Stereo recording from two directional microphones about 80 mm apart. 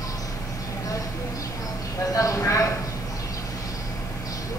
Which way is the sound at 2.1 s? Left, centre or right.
Left.